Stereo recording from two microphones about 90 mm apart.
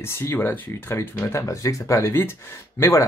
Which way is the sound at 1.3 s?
35° left (ahead or behind).